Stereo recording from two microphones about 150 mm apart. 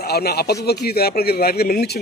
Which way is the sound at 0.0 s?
90° left.